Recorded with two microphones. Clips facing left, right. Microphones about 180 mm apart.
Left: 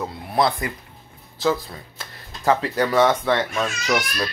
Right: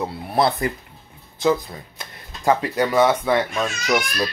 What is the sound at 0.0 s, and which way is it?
Speech, 25° right (ahead or behind).